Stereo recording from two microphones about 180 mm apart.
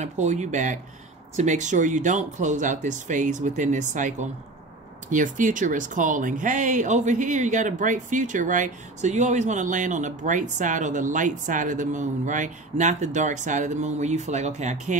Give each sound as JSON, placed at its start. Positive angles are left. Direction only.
{"t": 0.0, "sound": "speech", "side_deg": -40}